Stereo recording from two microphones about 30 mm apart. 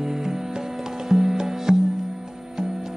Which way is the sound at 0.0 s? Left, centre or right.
Centre.